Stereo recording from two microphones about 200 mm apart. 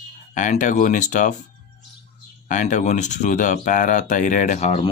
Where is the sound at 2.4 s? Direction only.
40° left (ahead or behind).